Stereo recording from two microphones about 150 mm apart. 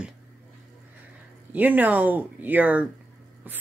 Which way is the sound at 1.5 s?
10° right (ahead or behind).